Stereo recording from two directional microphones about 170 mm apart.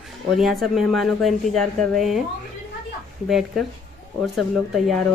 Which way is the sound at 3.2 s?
Centre (ahead or behind).